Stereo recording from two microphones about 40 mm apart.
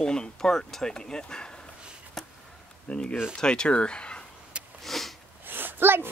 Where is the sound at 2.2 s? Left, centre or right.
Centre.